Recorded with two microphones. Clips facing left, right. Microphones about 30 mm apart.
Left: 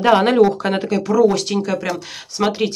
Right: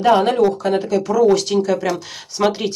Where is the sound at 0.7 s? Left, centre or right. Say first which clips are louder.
Right 1 dB; left.